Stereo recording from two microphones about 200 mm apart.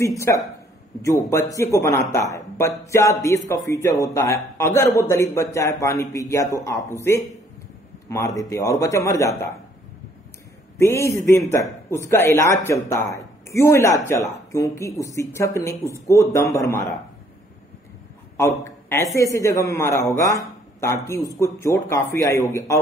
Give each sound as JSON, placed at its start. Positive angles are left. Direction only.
{"t": 0.0, "sound": "speech", "side_deg": 15}
{"t": 10.8, "sound": "speech", "side_deg": 15}
{"t": 18.4, "sound": "speech", "side_deg": 15}